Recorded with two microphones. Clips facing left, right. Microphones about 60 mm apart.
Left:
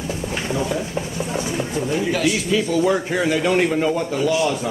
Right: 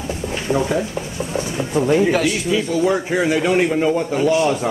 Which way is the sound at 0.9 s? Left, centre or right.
Centre.